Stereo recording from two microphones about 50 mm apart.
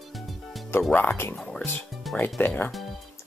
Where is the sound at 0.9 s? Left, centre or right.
Left.